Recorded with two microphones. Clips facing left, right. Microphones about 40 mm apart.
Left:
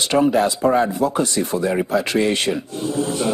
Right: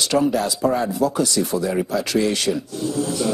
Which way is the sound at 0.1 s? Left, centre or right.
Left.